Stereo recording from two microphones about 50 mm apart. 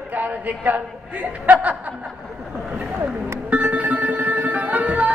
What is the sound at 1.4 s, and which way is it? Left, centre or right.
Speech, right.